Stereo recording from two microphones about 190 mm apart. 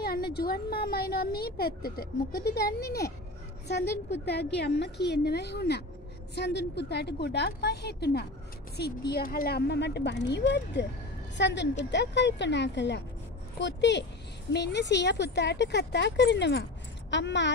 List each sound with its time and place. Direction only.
0.0 s speech: 55° left (ahead or behind)
4.1 s speech: 60° left (ahead or behind)